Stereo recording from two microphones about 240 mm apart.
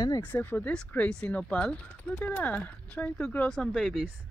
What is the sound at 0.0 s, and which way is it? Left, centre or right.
Speech, centre.